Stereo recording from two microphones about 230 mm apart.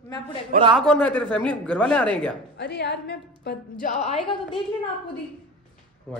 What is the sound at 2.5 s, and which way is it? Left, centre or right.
A woman's voice, left.